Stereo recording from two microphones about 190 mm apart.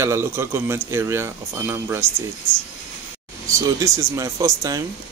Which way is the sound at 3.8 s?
15° right (ahead or behind).